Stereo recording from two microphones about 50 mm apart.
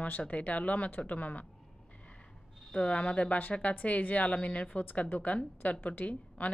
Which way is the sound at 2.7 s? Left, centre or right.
Left.